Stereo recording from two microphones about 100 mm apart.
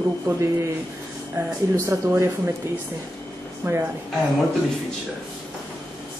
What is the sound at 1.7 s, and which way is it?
Speech, 30° right (ahead or behind).